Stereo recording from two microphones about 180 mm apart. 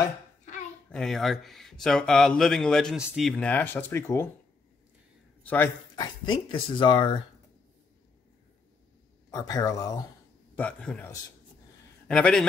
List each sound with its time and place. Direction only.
0.8 s speech: 5° left (ahead or behind)
5.4 s speech: 10° left (ahead or behind)
5.9 s speech: 25° left (ahead or behind)
9.3 s speech: 20° left (ahead or behind)
10.5 s a man's voice: 5° left (ahead or behind)